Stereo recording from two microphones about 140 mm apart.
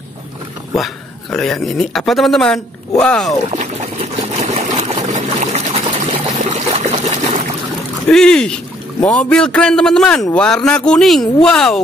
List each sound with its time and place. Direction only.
0.7 s speech: centre (ahead or behind)
3.5 s a sound: 50° right (ahead or behind)
6.0 s trickle: 55° right (ahead or behind)
8.1 s speech: 5° left (ahead or behind)